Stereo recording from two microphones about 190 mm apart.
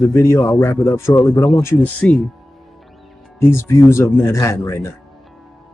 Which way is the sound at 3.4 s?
15° left (ahead or behind).